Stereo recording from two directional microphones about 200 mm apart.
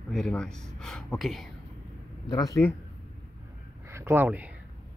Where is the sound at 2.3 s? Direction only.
20° left (ahead or behind).